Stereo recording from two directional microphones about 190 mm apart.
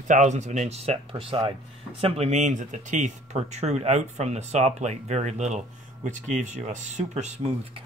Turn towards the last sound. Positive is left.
turn(degrees=-35)  # may be behind; listen again after turning